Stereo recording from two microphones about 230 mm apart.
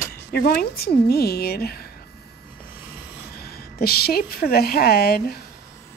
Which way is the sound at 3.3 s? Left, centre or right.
Left.